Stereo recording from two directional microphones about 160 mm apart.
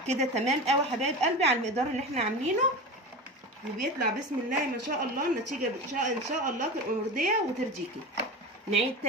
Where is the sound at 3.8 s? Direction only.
55° right (ahead or behind).